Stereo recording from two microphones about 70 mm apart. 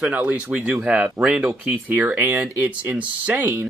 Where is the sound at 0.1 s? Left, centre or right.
Right.